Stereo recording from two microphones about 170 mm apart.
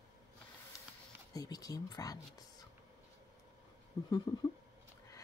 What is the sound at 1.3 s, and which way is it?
Speech, 20° left (ahead or behind).